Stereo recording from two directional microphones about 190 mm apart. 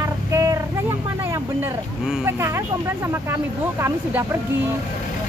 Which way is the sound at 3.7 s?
15° right (ahead or behind).